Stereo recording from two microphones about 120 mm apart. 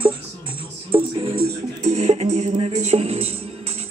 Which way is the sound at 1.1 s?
50° right (ahead or behind).